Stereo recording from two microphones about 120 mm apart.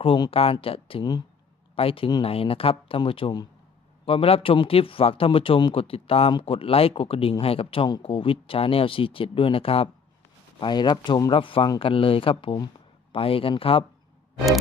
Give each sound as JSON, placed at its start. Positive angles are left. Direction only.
{"t": 0.0, "sound": "speech", "side_deg": 50}
{"t": 10.6, "sound": "speech", "side_deg": 40}